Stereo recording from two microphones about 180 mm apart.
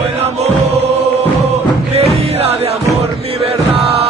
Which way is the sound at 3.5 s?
30° right (ahead or behind).